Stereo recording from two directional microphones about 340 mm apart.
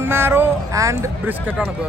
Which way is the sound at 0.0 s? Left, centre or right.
Centre.